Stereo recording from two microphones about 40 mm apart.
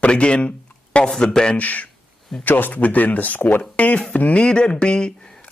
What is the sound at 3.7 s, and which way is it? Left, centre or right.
Speech, left.